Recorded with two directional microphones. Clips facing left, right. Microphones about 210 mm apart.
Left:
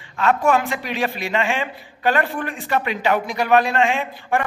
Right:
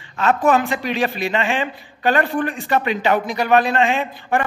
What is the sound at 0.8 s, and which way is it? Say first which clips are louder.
Speech: right 3 dB; 30° right (ahead or behind).